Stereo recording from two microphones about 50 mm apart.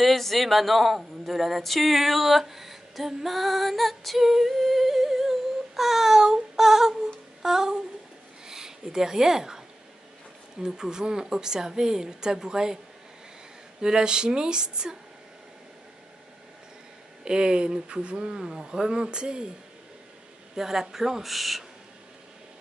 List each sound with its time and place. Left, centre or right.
0.0 s speech: centre
5.8 s a sound: centre
7.4 s speech: centre
10.6 s speech: centre
13.7 s speech: centre
17.2 s speech: centre
20.5 s speech: centre